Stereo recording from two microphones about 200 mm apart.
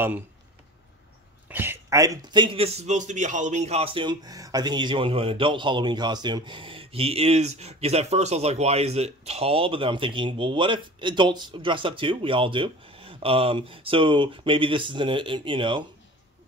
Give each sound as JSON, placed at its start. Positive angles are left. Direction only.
{"t": 1.5, "sound": "a man's voice", "side_deg": -10}